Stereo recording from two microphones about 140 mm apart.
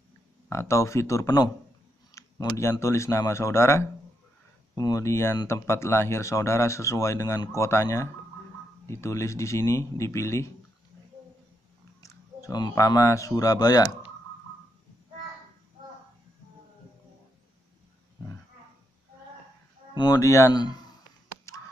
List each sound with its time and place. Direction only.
0.5 s speech: 20° left (ahead or behind)
12.0 s speech: 25° left (ahead or behind)
19.9 s speech: 30° left (ahead or behind)